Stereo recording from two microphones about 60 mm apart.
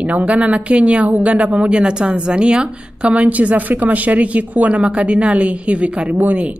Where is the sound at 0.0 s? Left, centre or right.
Right.